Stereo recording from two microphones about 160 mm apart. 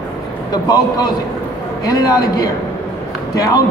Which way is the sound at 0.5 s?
25° left (ahead or behind).